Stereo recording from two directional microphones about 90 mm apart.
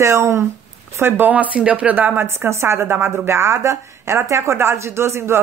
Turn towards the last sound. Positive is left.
turn(degrees=-30)  # may be behind; listen again after turning